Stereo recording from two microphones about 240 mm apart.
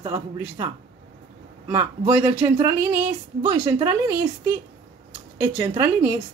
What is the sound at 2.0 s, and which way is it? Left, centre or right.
A woman's voice, centre.